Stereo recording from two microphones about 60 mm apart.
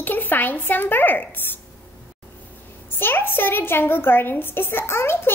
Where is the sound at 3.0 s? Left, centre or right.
Left.